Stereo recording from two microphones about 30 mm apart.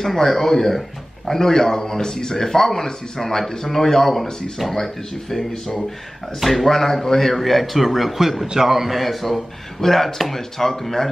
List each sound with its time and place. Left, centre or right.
0.0 s speech: centre
1.4 s a man's voice: centre
6.7 s a man's voice: centre